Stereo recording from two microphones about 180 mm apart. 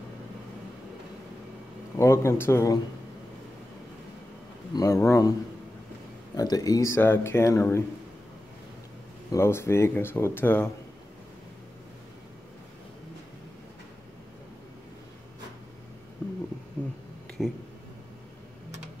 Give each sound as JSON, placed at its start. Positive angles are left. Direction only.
{"t": 2.0, "sound": "speech", "side_deg": 15}
{"t": 4.7, "sound": "speech", "side_deg": 15}
{"t": 6.3, "sound": "speech", "side_deg": 20}
{"t": 9.3, "sound": "speech", "side_deg": 15}
{"t": 16.2, "sound": "a sound", "side_deg": 5}